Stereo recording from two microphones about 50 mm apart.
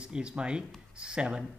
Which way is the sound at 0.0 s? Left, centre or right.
Centre.